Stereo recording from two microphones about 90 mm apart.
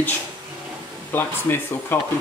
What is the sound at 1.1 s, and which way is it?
Speech, 25° left (ahead or behind).